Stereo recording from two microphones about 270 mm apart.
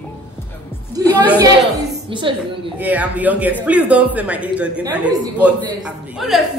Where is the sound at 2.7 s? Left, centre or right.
Centre.